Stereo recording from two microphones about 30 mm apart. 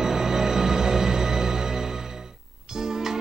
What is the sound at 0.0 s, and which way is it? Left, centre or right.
Music, centre.